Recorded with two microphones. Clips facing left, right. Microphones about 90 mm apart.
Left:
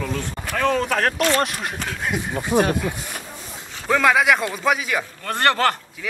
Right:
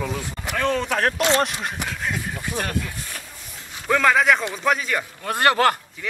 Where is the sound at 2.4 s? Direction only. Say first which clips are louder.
Left 10 dB; 20° left (ahead or behind).